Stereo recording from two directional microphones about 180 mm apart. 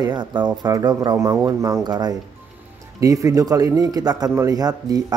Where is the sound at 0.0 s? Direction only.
25° right (ahead or behind).